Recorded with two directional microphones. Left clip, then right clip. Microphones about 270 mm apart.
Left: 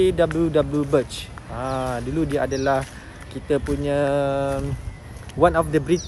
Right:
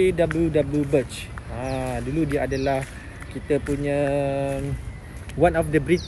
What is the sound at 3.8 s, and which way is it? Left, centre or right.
Bird, centre.